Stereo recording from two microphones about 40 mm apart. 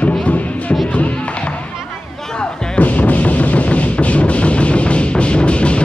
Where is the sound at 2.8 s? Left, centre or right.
Left.